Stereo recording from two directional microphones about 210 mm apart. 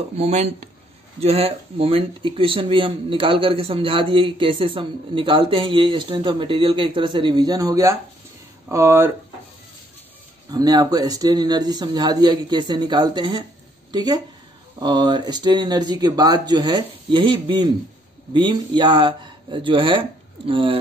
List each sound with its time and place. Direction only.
0.2 s speech: 35° right (ahead or behind); by 9.1 s 10° right (ahead or behind)
10.5 s speech: 20° right (ahead or behind)